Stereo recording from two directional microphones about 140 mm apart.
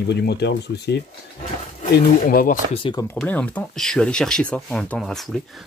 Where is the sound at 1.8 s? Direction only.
85° left.